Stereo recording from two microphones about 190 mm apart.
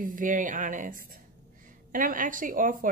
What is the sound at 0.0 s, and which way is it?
A woman's voice, 45° right (ahead or behind).